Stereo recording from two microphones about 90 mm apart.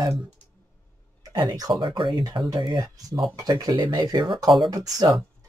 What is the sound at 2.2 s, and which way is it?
Speech, 45° right (ahead or behind).